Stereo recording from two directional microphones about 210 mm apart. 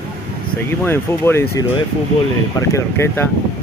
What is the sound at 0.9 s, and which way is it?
Speech, 10° left (ahead or behind).